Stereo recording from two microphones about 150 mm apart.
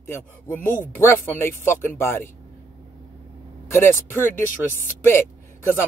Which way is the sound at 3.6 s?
15° left (ahead or behind).